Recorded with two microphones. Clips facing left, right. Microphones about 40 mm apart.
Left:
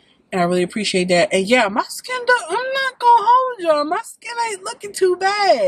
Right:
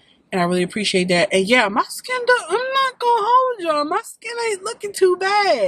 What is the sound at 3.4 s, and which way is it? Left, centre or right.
Speech, centre.